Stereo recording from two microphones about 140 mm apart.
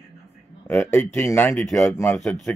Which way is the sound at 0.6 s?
15° left (ahead or behind).